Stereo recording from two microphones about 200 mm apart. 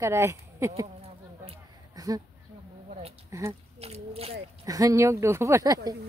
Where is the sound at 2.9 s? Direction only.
35° right (ahead or behind).